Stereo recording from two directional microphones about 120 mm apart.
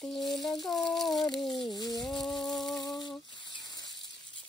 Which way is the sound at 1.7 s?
35° left (ahead or behind).